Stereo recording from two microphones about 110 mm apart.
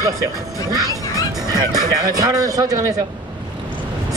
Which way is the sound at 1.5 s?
35° right (ahead or behind).